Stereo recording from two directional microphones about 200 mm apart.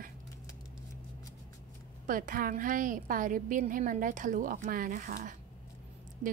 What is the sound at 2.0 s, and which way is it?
A woman's voice, 45° right (ahead or behind).